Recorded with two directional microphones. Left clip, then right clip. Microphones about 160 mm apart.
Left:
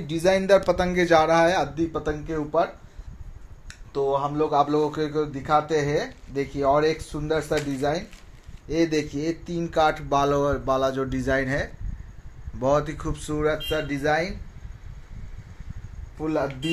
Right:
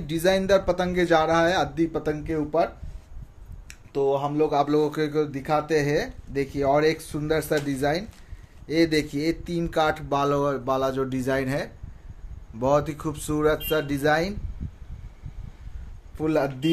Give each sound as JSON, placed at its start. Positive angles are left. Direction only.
{"t": 0.0, "sound": "a man's voice", "side_deg": -20}
{"t": 0.3, "sound": "speech", "side_deg": 0}
{"t": 1.8, "sound": "speech", "side_deg": -30}
{"t": 3.9, "sound": "a man's voice", "side_deg": -30}
{"t": 13.4, "sound": "speech", "side_deg": -40}
{"t": 16.2, "sound": "speech", "side_deg": -45}